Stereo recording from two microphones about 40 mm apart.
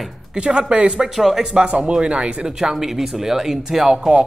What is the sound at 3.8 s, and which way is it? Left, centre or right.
Speech, right.